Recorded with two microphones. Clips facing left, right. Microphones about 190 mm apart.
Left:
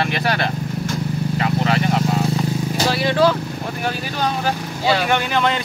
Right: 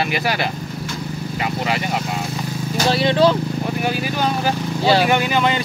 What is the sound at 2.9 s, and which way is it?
Vehicle, 25° right (ahead or behind).